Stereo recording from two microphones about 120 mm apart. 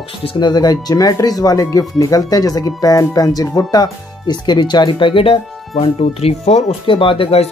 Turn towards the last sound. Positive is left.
turn(degrees=50)  # may be behind; listen again after turning